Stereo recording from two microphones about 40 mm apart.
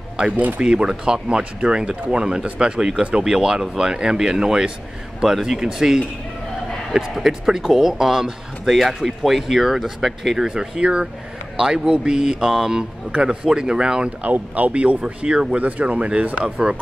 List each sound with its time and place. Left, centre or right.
0.6 s speech: centre
3.3 s speech: centre
10.4 s speech: right
13.1 s speech: right
14.2 s speech: right
15.2 s speech: centre
15.5 s speech: right